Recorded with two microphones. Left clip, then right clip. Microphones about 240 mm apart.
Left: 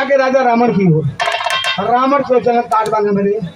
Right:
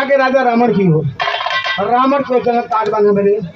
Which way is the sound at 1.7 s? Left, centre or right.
Left.